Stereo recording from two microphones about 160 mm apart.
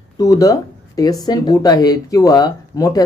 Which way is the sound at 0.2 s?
20° left (ahead or behind).